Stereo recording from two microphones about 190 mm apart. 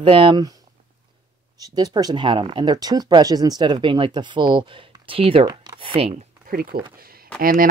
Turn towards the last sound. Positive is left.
turn(degrees=-50)  # may be behind; listen again after turning